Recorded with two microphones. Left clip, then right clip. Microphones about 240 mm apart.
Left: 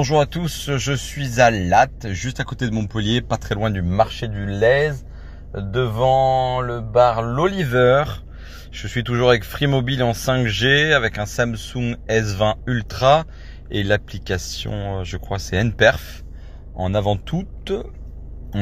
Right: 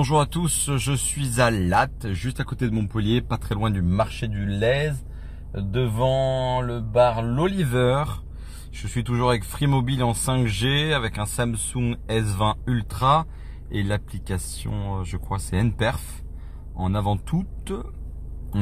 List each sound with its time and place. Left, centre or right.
0.0 s speech: centre